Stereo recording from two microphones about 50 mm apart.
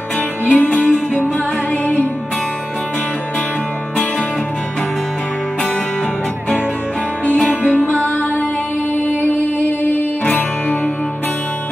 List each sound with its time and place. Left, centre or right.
0.5 s music: left
7.2 s music: left